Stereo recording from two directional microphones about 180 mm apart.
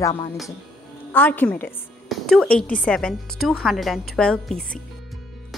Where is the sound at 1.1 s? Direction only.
10° left (ahead or behind).